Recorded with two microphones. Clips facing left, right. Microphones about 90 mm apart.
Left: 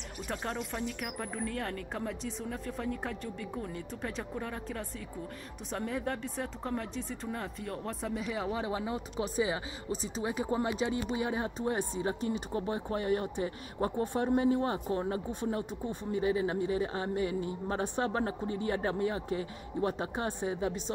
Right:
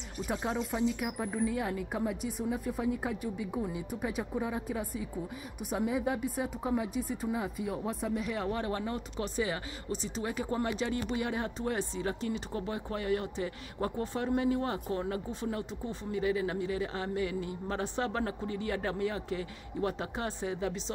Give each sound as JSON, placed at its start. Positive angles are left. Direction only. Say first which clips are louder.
{"t": 0.3, "sound": "speech", "louder": "right 3 dB", "side_deg": -5}
{"t": 10.2, "sound": "speech", "louder": "left 2 dB", "side_deg": 20}